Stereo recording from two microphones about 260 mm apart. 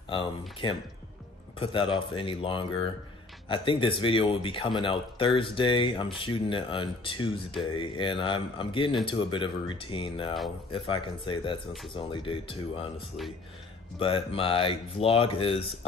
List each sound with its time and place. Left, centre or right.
0.6 s speech: centre
13.9 s speech: centre